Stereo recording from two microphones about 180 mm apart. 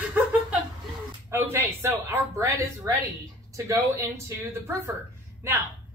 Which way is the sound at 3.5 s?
15° right (ahead or behind).